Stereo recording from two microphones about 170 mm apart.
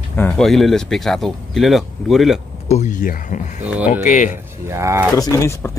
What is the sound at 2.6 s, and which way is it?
Speech, 45° left (ahead or behind).